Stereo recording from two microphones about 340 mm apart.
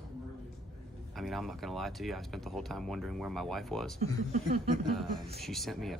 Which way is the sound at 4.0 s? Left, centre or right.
Right.